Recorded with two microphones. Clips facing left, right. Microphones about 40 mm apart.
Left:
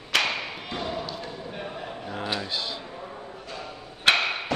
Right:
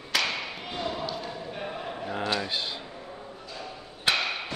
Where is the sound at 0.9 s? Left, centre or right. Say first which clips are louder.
Even; centre.